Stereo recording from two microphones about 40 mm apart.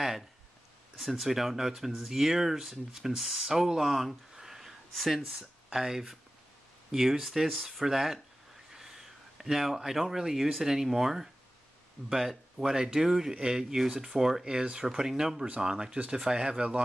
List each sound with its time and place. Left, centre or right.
0.9 s speech: centre
4.9 s speech: centre
5.4 s speech: centre
7.8 s speech: centre
13.7 s speech: centre; by 16.8 s right